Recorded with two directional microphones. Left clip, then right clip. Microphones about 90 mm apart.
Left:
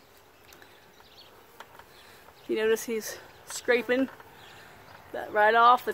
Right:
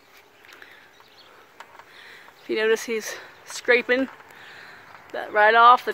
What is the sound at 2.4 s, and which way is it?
Speech, 35° right (ahead or behind).